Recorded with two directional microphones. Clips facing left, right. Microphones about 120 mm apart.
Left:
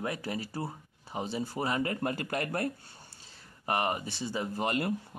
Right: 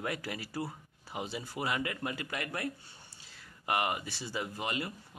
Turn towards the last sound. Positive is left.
turn(degrees=35)  # may be behind; listen again after turning